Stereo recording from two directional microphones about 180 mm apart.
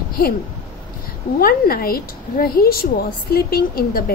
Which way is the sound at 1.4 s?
55° left (ahead or behind).